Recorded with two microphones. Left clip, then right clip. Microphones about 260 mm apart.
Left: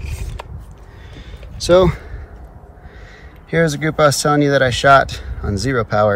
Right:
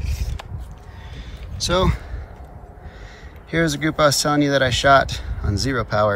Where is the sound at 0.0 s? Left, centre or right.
Left.